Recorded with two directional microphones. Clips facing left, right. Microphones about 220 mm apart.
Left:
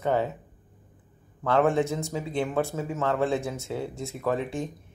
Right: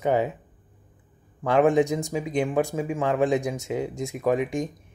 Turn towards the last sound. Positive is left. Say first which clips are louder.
# right 4 dB
turn(degrees=-15)  # may be behind; listen again after turning